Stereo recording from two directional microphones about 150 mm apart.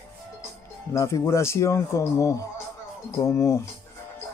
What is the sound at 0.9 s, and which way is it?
Speech, 20° left (ahead or behind).